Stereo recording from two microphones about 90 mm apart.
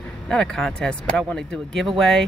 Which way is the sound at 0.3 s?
5° left (ahead or behind).